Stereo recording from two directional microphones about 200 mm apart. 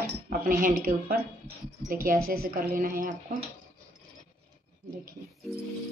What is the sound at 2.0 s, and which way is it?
A woman's voice, 50° right (ahead or behind).